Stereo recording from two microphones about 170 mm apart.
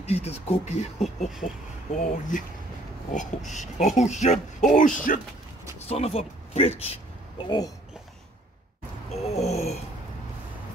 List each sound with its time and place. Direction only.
0.0 s speech: 40° left (ahead or behind)
5.9 s speech: 35° left (ahead or behind)
7.3 s speech: 25° left (ahead or behind)
9.1 s gasp: 40° left (ahead or behind)